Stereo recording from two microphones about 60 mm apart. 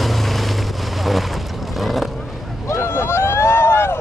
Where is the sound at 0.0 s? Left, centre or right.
Centre.